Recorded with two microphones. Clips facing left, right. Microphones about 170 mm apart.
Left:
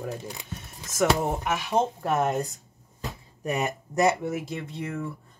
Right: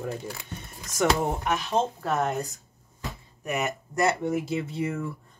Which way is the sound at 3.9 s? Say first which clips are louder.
Left 2 dB; 15° left (ahead or behind).